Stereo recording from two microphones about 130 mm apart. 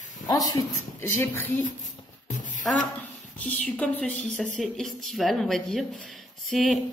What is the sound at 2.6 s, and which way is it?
Speech, centre (ahead or behind).